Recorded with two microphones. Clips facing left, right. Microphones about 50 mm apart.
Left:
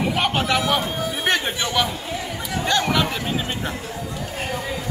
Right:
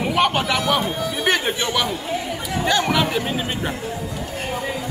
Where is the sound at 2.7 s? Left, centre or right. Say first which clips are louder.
Right 1 dB; centre.